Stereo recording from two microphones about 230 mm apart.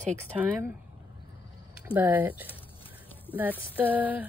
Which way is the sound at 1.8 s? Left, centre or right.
Centre.